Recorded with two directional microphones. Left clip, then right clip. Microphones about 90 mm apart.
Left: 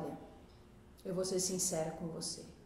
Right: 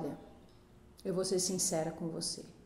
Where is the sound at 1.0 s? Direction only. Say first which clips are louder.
Right 3 dB; 25° right (ahead or behind).